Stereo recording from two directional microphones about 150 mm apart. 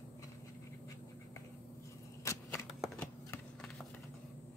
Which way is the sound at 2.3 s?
15° left (ahead or behind).